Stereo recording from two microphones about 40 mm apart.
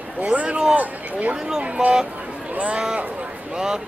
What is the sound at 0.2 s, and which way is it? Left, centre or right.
Speech, right.